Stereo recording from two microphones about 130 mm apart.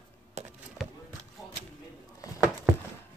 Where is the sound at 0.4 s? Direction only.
55° right (ahead or behind).